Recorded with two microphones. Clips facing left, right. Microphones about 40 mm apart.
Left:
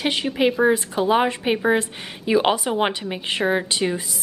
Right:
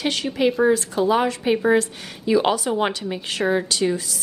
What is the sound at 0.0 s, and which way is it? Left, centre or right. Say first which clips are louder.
A woman's voice: left 1 dB; centre.